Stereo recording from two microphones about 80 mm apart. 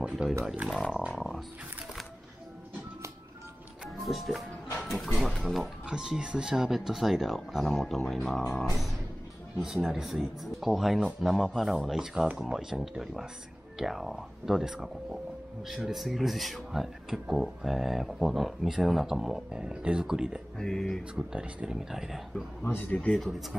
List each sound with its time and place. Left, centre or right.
0.0 s speech: centre
1.1 s a sound: centre
3.8 s music: centre
4.8 s speech: centre
9.6 s speech: centre
20.5 s speech: centre
21.1 s speech: centre
22.6 s speech: left